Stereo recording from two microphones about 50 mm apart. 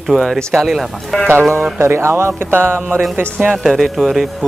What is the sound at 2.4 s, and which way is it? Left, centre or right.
Speech, right.